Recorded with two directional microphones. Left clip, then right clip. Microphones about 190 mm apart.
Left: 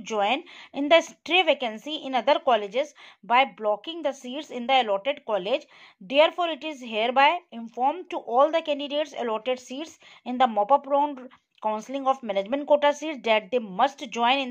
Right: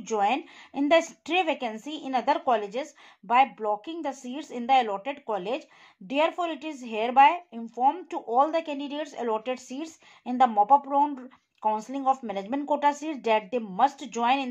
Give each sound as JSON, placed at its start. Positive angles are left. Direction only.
{"t": 0.0, "sound": "speech", "side_deg": 25}